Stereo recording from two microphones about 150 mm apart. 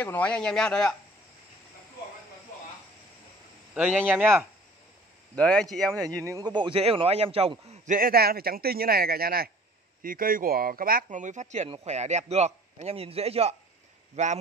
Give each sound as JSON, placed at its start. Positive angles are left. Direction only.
{"t": 0.0, "sound": "speech", "side_deg": 10}
{"t": 3.7, "sound": "speech", "side_deg": -10}
{"t": 5.3, "sound": "speech", "side_deg": 5}
{"t": 6.0, "sound": "a man's voice", "side_deg": -20}
{"t": 10.0, "sound": "a man's voice", "side_deg": -70}